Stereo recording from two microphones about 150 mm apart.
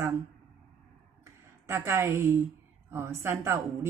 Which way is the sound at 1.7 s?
15° right (ahead or behind).